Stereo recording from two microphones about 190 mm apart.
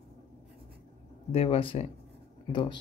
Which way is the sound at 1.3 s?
30° left (ahead or behind).